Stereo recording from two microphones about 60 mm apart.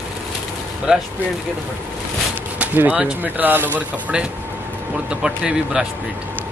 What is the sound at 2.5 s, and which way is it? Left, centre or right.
Speech, right.